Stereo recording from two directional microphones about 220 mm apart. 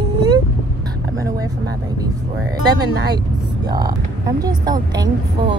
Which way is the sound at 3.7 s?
15° right (ahead or behind).